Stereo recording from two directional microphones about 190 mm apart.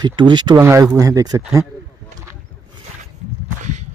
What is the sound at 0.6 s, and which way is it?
Speech, 10° right (ahead or behind).